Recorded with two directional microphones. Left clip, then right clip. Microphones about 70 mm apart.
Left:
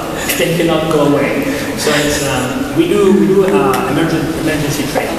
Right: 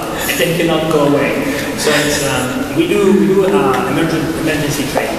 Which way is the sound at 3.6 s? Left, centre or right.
Centre.